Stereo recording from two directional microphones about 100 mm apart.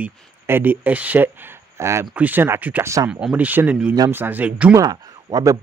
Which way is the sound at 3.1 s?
10° right (ahead or behind).